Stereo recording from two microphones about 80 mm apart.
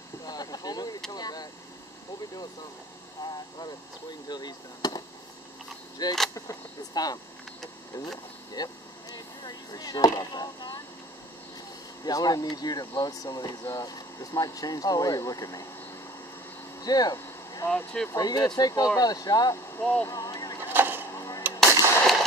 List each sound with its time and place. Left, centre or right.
0.2 s vehicle: left
1.1 s speech: left
3.3 s speech: left
6.3 s speech: left
8.6 s speech: left
12.0 s speech: left
16.8 s vehicle: left
17.6 s speech: centre
18.1 s speech: left
19.8 s speech: left
20.1 s vehicle: left
20.6 s vehicle: right
21.4 s gunshot: right